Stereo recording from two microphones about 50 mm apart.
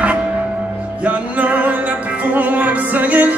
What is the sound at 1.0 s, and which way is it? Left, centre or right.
Music, right.